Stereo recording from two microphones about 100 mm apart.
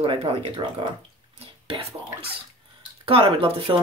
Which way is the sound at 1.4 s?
70° right (ahead or behind).